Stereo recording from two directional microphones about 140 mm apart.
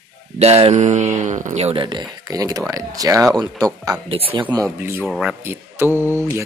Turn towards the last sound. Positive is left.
turn(degrees=-15)  # may be behind; listen again after turning